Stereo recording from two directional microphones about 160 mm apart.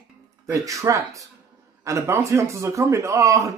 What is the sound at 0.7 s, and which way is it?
A man's voice, 20° right (ahead or behind).